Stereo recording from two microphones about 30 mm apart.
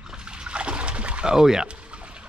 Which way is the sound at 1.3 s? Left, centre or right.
Right.